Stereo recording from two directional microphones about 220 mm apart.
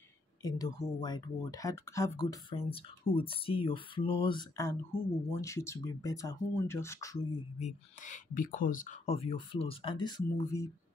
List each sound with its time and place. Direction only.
0.4 s speech: 15° left (ahead or behind)
7.5 s speech: 35° left (ahead or behind); by 10.7 s 15° left (ahead or behind)